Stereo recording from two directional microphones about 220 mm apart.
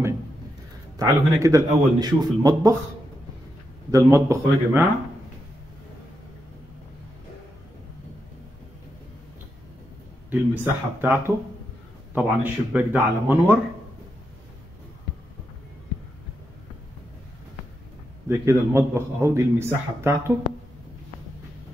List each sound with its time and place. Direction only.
0.9 s a man's voice: 15° right (ahead or behind)
3.9 s a man's voice: 15° right (ahead or behind)
10.6 s a man's voice: 10° right (ahead or behind)
18.3 s a man's voice: 10° right (ahead or behind)